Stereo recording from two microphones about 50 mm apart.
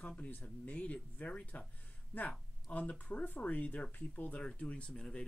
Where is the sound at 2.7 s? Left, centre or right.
Left.